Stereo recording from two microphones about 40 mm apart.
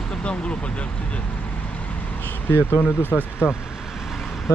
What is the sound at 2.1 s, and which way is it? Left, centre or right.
Speech, left.